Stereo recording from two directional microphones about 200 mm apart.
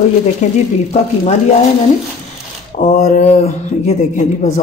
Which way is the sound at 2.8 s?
35° left (ahead or behind).